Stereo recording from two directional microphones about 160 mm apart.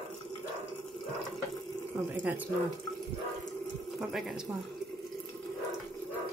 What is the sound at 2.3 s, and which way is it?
Speech, 10° right (ahead or behind).